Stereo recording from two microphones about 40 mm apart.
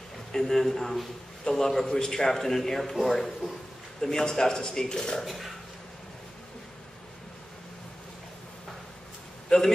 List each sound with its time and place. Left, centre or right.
0.3 s a man's voice: centre
5.2 s speech: centre
9.5 s a man's voice: centre